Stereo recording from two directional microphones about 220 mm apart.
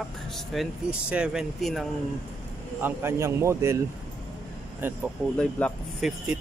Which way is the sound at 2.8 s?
10° right (ahead or behind).